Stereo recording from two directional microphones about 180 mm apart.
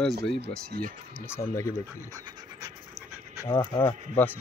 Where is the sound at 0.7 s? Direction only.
50° right (ahead or behind).